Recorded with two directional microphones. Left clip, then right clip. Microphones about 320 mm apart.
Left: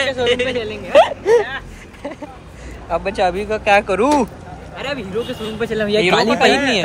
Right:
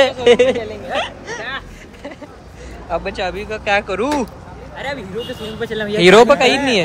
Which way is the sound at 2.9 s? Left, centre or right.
Centre.